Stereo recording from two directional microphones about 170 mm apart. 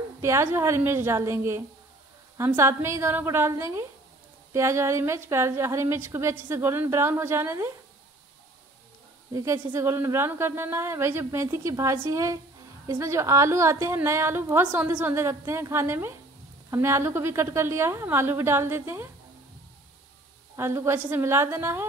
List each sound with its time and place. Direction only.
0.2 s a woman's voice: 15° right (ahead or behind)
9.3 s a woman's voice: 20° right (ahead or behind)
20.5 s a woman's voice: 15° right (ahead or behind)